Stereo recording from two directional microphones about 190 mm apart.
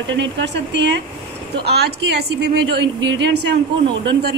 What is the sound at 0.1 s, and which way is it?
A woman's voice, 70° right (ahead or behind).